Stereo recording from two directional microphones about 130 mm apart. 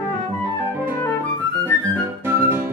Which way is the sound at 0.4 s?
15° right (ahead or behind).